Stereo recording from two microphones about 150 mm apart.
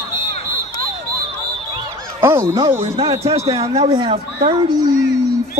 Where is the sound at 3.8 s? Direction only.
30° right (ahead or behind).